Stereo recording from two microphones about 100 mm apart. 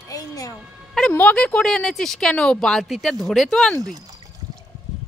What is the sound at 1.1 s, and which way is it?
A woman's voice, 10° left (ahead or behind).